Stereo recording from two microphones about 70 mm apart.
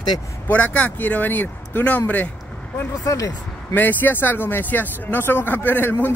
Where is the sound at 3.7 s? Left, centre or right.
Left.